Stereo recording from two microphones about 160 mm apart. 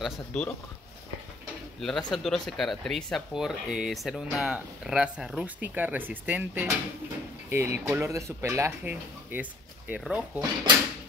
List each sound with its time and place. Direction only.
0.0 s speech: 5° left (ahead or behind)
1.8 s speech: 5° left (ahead or behind)